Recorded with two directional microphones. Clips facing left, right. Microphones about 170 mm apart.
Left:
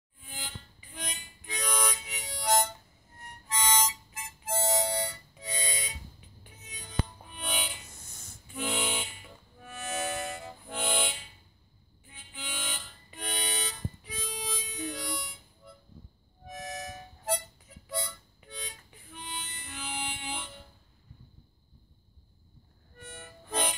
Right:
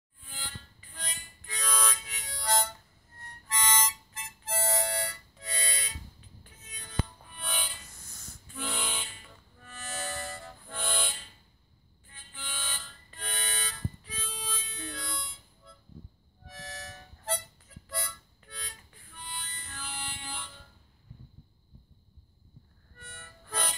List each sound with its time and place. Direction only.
0.2 s harmonica: 15° left (ahead or behind)
6.4 s music: 15° left (ahead or behind)
12.1 s harmonica: 15° left (ahead or behind)
22.9 s harmonica: 15° left (ahead or behind)